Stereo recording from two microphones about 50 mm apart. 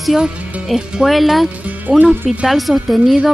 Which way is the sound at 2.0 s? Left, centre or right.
Right.